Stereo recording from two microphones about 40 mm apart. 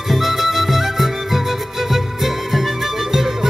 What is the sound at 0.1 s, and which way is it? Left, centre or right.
Music, centre.